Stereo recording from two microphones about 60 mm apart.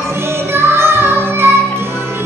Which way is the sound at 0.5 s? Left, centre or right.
Right.